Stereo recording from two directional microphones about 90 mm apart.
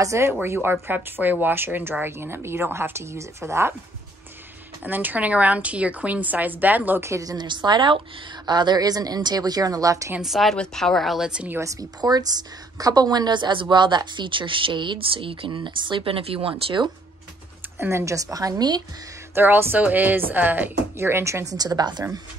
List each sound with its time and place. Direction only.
0.0 s a woman's voice: 35° right (ahead or behind)
4.8 s a woman's voice: 20° right (ahead or behind)
7.1 s a woman's voice: 40° right (ahead or behind)
7.3 s a woman's voice: 55° right (ahead or behind); by 10.1 s 40° right (ahead or behind)
10.2 s a woman's voice: centre (ahead or behind)
12.0 s a woman's voice: 45° right (ahead or behind); by 16.8 s 90° right
17.7 s a woman's voice: 30° right (ahead or behind); by 18.8 s 45° right (ahead or behind)
19.3 s speech: 25° right (ahead or behind)
21.5 s a woman's voice: 45° right (ahead or behind)